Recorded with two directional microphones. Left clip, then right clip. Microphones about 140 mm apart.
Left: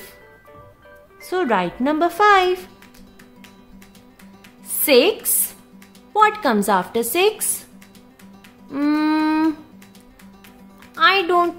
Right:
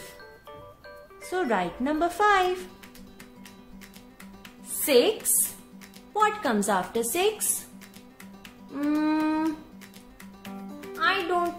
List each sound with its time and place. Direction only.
1.3 s a woman's voice: 40° left (ahead or behind)
4.8 s speech: 40° left (ahead or behind)
6.1 s a woman's voice: 40° left (ahead or behind)
8.7 s music: 50° left (ahead or behind)
11.0 s speech: 55° left (ahead or behind)